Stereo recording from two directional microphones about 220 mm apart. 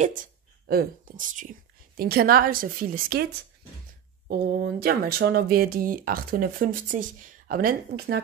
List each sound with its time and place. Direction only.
0.0 s speech: 35° right (ahead or behind)
4.3 s speech: 45° right (ahead or behind)